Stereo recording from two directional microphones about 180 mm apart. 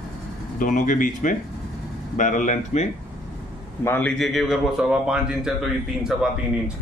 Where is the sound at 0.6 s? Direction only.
45° left (ahead or behind).